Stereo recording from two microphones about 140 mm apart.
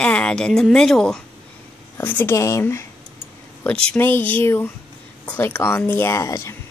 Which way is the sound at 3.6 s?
10° left (ahead or behind).